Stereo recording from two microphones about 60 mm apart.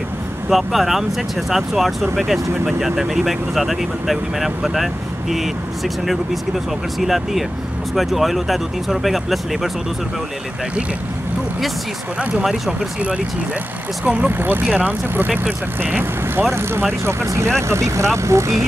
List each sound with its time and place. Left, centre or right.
0.5 s speech: centre
7.0 s speech: centre
14.0 s speech: right